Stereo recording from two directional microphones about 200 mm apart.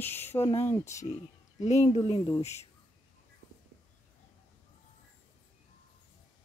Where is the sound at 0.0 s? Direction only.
10° left (ahead or behind).